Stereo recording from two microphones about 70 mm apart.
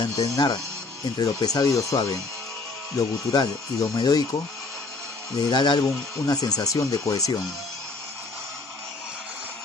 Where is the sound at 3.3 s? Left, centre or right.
Left.